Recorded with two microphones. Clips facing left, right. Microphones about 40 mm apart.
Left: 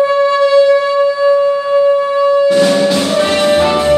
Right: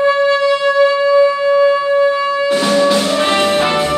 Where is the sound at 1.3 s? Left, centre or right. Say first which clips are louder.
Left 1 dB; right.